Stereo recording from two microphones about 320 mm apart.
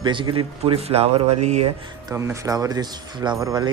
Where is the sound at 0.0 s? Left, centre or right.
Centre.